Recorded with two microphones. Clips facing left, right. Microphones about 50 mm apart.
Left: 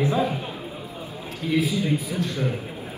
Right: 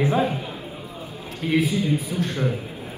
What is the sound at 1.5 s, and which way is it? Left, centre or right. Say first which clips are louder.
A man's voice: right 1 dB; right.